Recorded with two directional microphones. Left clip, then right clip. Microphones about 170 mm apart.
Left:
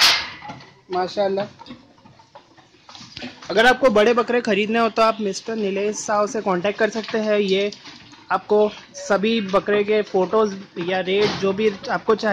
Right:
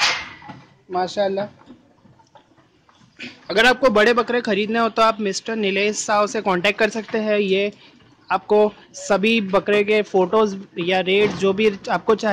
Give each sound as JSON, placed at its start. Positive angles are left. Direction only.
{"t": 0.9, "sound": "speech", "side_deg": -20}
{"t": 3.4, "sound": "speech", "side_deg": -15}
{"t": 3.9, "sound": "a man's voice", "side_deg": 0}